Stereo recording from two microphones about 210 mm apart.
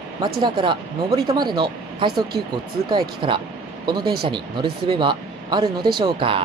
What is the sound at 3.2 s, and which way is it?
Speech, 25° right (ahead or behind).